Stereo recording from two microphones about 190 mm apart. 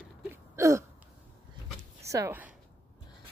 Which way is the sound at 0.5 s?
15° right (ahead or behind).